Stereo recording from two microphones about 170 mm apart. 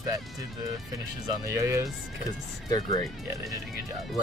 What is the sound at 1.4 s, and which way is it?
Speech, 15° right (ahead or behind).